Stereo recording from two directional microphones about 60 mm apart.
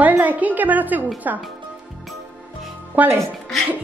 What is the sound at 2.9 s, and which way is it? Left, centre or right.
Speech, right.